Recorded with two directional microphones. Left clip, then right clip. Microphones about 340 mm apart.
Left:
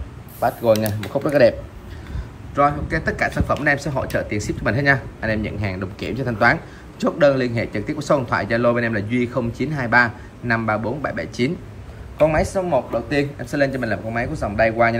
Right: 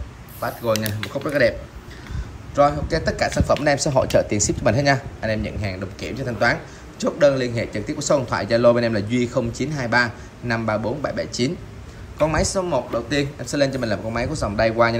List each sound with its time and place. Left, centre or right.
0.4 s speech: centre
2.5 s speech: centre